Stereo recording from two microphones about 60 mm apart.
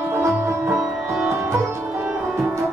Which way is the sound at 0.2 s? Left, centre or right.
Right.